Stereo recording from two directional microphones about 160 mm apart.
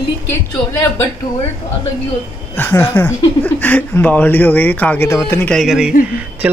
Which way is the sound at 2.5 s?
10° left (ahead or behind).